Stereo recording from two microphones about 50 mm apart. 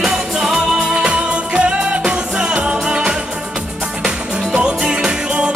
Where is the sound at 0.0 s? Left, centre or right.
Centre.